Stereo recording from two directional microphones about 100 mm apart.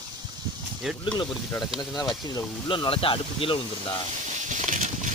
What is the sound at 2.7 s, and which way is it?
Speech, 60° left (ahead or behind).